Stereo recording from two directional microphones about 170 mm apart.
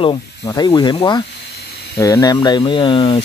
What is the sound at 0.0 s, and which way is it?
Speech, 25° left (ahead or behind).